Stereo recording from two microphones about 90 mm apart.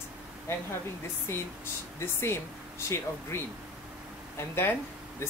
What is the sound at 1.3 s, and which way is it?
Speech, 30° left (ahead or behind).